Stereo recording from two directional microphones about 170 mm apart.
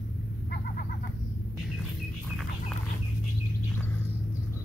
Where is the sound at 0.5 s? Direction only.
60° left (ahead or behind).